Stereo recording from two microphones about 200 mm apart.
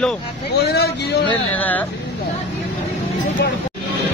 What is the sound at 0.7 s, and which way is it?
Speech, 55° left (ahead or behind).